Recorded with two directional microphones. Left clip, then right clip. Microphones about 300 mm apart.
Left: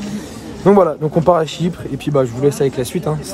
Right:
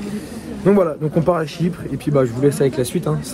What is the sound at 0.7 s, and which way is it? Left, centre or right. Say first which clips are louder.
Speech: left 4 dB; centre.